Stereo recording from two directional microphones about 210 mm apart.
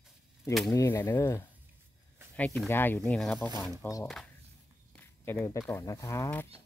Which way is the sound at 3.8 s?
15° left (ahead or behind).